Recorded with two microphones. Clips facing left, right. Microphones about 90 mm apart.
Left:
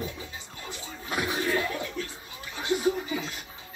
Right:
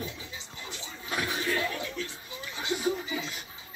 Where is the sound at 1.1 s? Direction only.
10° left (ahead or behind).